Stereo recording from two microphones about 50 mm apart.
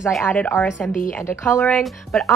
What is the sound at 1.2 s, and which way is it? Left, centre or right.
Speech, left.